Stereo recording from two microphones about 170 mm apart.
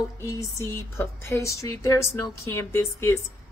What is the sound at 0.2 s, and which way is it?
A woman's voice, 15° left (ahead or behind).